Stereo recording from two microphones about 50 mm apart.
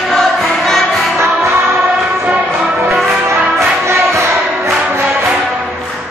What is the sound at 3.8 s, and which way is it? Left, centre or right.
Music, right.